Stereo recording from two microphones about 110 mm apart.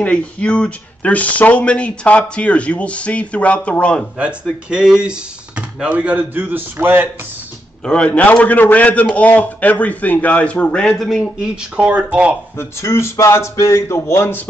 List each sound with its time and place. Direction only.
0.0 s speech: 10° left (ahead or behind)
4.2 s a man's voice: 10° right (ahead or behind)
7.8 s speech: 10° left (ahead or behind); by 12.4 s 10° right (ahead or behind)
12.5 s speech: 25° left (ahead or behind)